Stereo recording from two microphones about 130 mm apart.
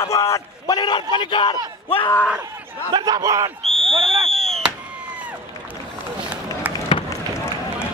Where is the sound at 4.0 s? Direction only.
45° right (ahead or behind).